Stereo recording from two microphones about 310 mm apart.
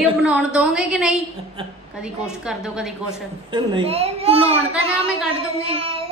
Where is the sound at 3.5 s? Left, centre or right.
Centre.